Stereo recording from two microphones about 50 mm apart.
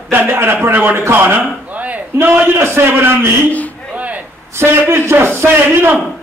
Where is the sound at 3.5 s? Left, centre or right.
Left.